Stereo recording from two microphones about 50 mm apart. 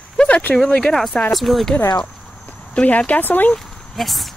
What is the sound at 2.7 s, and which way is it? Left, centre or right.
Speech, left.